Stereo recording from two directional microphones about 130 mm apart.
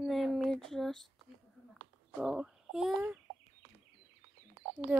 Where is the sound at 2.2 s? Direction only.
5° right (ahead or behind).